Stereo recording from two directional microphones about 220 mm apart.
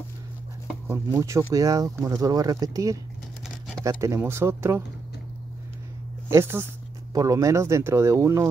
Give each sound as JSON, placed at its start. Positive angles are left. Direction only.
{"t": 0.8, "sound": "speech", "side_deg": -10}
{"t": 6.3, "sound": "speech", "side_deg": -10}